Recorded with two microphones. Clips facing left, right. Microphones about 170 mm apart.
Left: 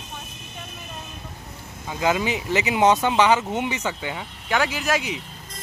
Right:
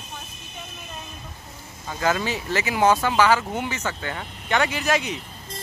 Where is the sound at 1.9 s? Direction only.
15° left (ahead or behind).